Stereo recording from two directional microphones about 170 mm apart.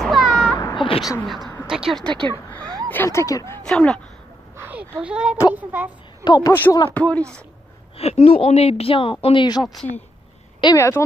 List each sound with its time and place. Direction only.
0.0 s a sound: centre (ahead or behind)
0.6 s baby cry: 25° left (ahead or behind)
1.7 s speech: centre (ahead or behind)
2.0 s speech: 30° right (ahead or behind)
2.3 s speech: 10° left (ahead or behind)
3.6 s speech: 5° left (ahead or behind)
4.6 s speech: 10° right (ahead or behind)
6.2 s a man's voice: 25° left (ahead or behind)
6.5 s speech: 10° left (ahead or behind)
8.0 s speech: 35° left (ahead or behind)
10.6 s speech: 20° left (ahead or behind)